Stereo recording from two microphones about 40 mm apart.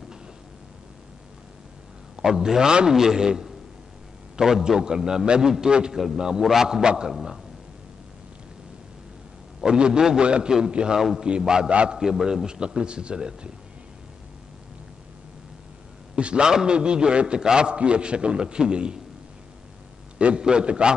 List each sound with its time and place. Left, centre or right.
2.2 s a man's voice: centre
9.6 s a man's voice: right
11.0 s a man's voice: centre
11.2 s a man's voice: right
11.7 s a man's voice: right
12.0 s a man's voice: centre
12.4 s a man's voice: right
16.2 s a man's voice: right
16.4 s a man's voice: centre
20.2 s a man's voice: right